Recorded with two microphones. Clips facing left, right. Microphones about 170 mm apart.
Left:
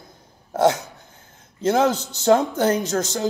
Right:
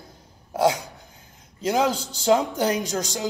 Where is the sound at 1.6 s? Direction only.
10° right (ahead or behind).